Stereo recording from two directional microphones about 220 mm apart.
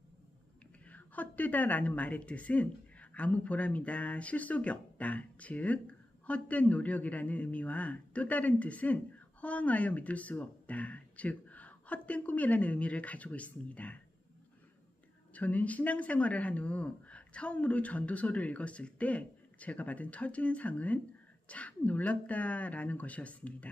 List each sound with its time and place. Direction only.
0.8 s speech: 5° left (ahead or behind)
15.3 s speech: 5° left (ahead or behind)